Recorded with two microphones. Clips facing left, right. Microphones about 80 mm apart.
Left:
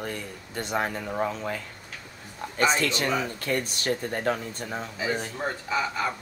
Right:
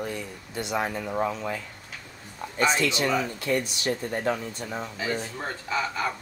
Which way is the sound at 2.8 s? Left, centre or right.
Left.